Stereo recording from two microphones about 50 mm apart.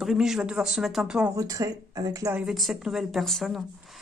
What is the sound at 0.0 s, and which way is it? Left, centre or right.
Speech, centre.